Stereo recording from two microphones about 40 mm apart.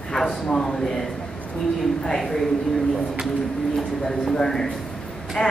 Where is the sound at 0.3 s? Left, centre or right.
Left.